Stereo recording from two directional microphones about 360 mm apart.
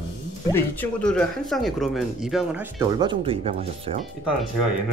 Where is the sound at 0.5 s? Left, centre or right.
Centre.